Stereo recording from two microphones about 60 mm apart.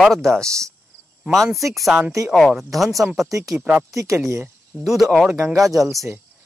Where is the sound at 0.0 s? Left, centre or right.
Centre.